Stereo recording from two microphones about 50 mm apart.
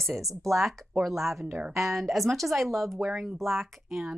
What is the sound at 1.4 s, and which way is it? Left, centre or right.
Speech, right.